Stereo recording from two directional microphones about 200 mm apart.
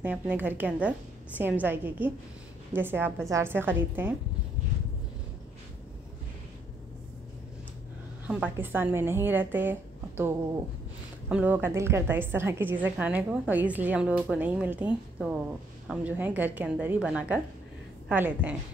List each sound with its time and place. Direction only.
0.0 s a woman's voice: 10° right (ahead or behind)
8.3 s a woman's voice: 10° right (ahead or behind)